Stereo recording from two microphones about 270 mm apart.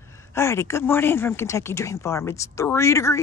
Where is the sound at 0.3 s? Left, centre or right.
Centre.